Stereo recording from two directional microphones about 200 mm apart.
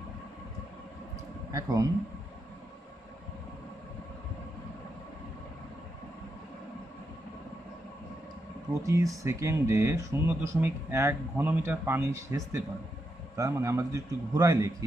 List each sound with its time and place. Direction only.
1.5 s speech: 15° right (ahead or behind)
8.8 s speech: 15° right (ahead or behind)